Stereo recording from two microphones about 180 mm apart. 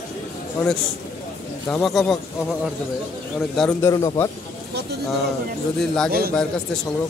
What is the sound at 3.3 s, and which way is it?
Speech, 5° left (ahead or behind).